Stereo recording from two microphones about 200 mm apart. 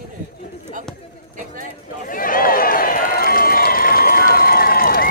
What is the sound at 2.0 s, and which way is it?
Run, 45° left (ahead or behind).